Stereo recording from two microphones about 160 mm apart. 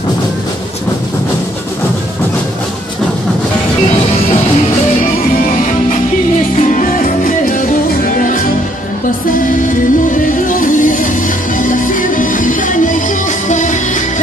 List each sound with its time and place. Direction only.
6.7 s music: 55° left (ahead or behind)
9.5 s music: 55° left (ahead or behind)